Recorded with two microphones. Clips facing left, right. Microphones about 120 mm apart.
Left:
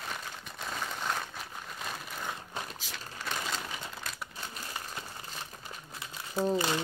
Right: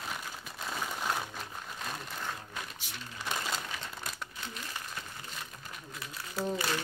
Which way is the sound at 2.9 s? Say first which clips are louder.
Left 2 dB; 90° left.